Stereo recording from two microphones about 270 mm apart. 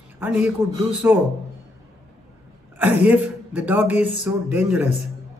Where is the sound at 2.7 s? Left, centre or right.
Centre.